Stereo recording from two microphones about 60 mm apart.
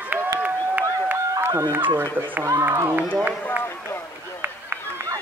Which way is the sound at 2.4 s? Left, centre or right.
Right.